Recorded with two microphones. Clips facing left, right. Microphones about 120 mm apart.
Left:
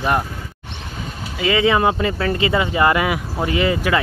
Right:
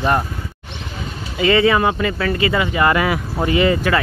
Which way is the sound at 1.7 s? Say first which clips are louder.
Even; 25° left (ahead or behind).